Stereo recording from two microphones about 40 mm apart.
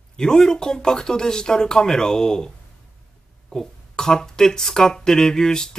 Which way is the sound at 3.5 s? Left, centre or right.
Centre.